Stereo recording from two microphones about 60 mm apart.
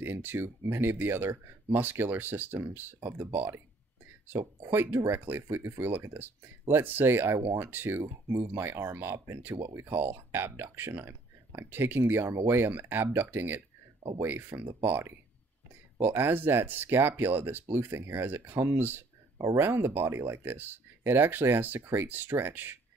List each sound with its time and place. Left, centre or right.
0.0 s speech: right
5.1 s speech: right
19.3 s speech: right
19.6 s speech: right